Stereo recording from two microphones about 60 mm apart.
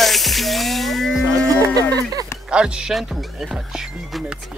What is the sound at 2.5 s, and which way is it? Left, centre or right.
Speech, centre.